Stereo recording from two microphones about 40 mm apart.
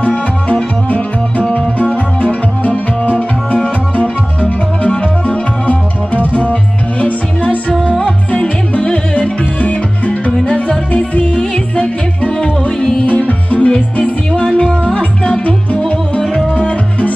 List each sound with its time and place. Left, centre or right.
0.0 s music: left
9.6 s music: left
11.0 s yodeling: left
13.3 s music: left
14.3 s music: centre